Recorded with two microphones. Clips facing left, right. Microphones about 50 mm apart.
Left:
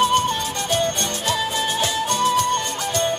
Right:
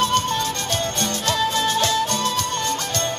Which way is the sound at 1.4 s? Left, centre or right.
Centre.